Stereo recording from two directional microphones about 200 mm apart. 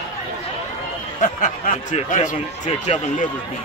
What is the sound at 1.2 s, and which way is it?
Speech, 40° left (ahead or behind).